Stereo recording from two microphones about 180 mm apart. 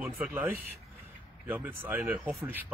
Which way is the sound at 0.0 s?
10° right (ahead or behind).